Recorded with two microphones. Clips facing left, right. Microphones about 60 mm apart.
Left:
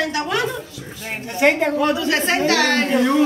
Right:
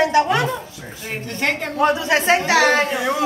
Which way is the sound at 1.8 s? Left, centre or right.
Right.